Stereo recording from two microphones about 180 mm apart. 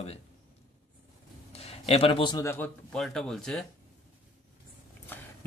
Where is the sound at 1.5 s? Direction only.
35° left (ahead or behind).